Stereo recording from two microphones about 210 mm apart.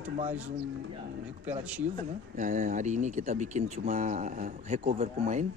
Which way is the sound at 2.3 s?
35° right (ahead or behind).